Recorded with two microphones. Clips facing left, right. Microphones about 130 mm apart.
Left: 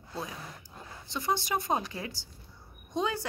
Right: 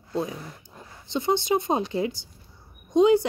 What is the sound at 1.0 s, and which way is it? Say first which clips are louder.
A woman's voice: right 7 dB; 25° right (ahead or behind).